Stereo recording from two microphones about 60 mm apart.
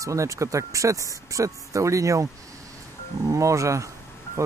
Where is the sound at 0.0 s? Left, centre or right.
Right.